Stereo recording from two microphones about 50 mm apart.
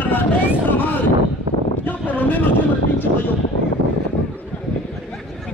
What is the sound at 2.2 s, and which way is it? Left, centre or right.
Music, left.